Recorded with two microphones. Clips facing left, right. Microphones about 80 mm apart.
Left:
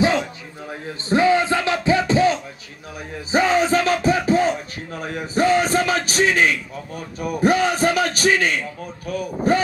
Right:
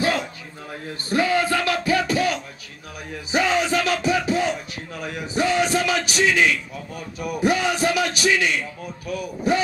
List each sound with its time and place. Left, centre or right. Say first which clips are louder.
1.0 s music: left 4 dB; left